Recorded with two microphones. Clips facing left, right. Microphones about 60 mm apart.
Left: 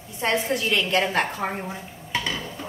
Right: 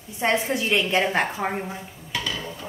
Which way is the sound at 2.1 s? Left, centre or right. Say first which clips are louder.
Left 2 dB; left.